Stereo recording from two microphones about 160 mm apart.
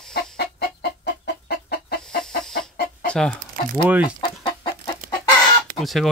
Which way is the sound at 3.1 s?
5° left (ahead or behind).